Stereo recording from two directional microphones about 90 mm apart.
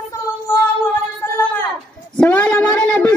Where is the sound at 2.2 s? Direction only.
20° left (ahead or behind).